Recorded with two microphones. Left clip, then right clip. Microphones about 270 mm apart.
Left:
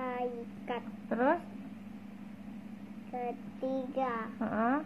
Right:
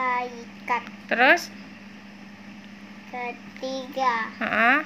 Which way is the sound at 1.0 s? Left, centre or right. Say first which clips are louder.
Right 12 dB; right.